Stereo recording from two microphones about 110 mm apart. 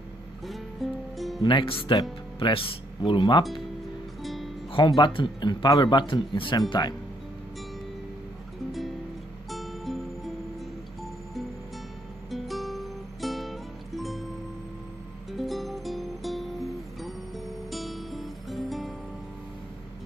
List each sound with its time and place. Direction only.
0.8 s music: centre (ahead or behind)
1.4 s speech: 45° left (ahead or behind)
4.2 s music: centre (ahead or behind)
4.7 s speech: 45° left (ahead or behind)
9.5 s music: centre (ahead or behind)
12.3 s music: centre (ahead or behind)
15.3 s music: centre (ahead or behind)